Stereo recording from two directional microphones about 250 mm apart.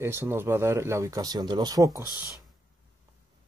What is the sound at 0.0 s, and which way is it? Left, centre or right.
Speech, centre.